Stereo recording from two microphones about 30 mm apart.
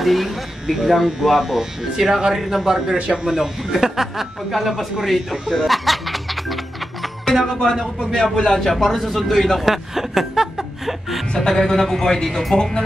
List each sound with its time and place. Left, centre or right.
0.0 s speech: centre
5.0 s music: centre
7.8 s a man's voice: centre
8.2 s speech: left
8.5 s a man's voice: centre
9.7 s speech: centre
11.5 s a man's voice: centre
12.5 s speech: left